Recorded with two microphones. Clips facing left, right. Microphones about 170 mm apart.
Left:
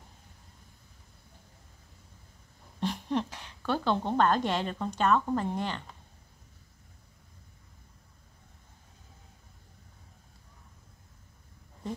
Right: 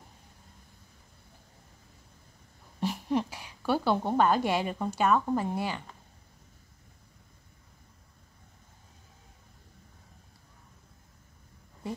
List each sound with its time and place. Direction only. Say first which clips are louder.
2.8 s a woman's voice: right 1 dB; 10° right (ahead or behind)